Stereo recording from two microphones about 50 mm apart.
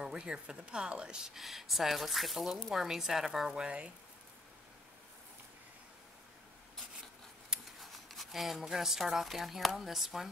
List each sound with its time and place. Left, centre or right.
0.0 s speech: centre
3.4 s speech: centre
7.8 s speech: centre